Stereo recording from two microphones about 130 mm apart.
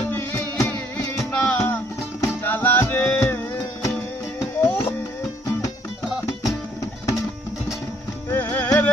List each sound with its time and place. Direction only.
0.1 s music: 20° left (ahead or behind)
4.6 s a sound: 20° left (ahead or behind)
8.3 s music: 15° left (ahead or behind)